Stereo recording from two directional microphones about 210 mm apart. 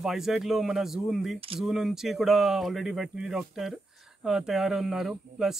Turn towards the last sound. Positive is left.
turn(degrees=0)  # may be behind; listen again after turning